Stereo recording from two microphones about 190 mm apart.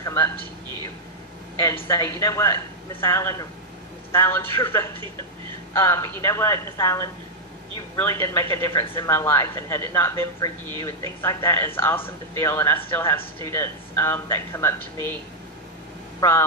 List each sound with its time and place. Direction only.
0.0 s a sound: 15° left (ahead or behind)
1.9 s speech: 15° left (ahead or behind)
16.2 s speech: 15° left (ahead or behind)